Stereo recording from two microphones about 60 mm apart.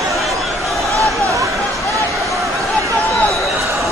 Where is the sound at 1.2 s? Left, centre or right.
Right.